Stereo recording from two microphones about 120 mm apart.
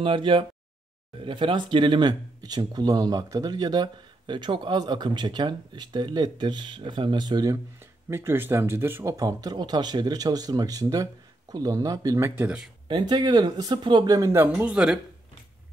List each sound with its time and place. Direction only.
0.0 s speech: 45° right (ahead or behind)
7.5 s speech: 20° right (ahead or behind)
9.1 s speech: 30° right (ahead or behind)
12.4 s speech: 10° right (ahead or behind)
12.8 s speech: 40° right (ahead or behind)
14.5 s speech: 10° right (ahead or behind)